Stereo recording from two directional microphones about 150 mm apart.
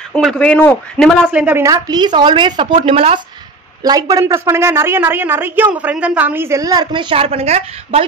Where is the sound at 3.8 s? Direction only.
25° right (ahead or behind).